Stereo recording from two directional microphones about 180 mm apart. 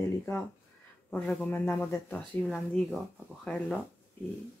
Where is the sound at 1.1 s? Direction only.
10° left (ahead or behind).